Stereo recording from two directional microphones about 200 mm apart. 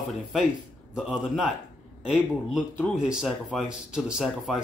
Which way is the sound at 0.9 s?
5° right (ahead or behind).